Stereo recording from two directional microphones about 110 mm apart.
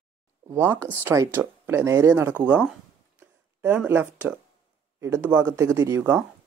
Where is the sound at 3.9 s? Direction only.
20° right (ahead or behind).